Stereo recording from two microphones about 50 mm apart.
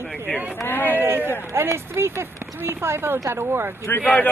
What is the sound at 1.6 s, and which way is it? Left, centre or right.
Speech, right.